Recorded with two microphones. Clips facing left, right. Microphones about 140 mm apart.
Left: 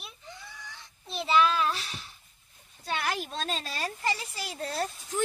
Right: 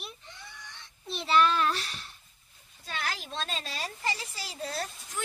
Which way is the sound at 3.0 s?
50° left (ahead or behind).